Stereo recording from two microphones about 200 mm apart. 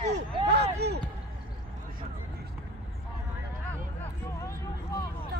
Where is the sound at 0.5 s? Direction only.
55° right (ahead or behind).